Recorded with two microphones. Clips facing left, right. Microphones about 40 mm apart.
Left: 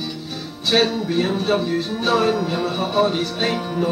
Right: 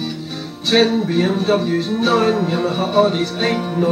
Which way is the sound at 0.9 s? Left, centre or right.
Centre.